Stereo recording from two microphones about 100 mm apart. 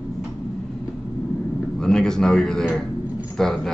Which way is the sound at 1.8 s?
5° left (ahead or behind).